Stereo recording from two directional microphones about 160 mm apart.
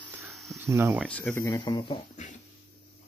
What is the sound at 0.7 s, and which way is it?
Speech, 15° right (ahead or behind).